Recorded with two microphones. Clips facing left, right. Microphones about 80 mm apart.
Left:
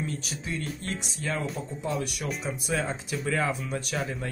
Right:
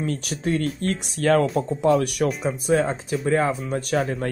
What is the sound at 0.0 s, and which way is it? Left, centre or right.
Speech, right.